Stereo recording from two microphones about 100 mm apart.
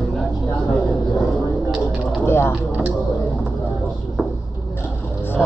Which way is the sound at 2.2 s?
25° left (ahead or behind).